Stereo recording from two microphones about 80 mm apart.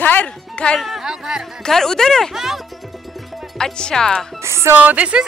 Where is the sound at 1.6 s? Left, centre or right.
Centre.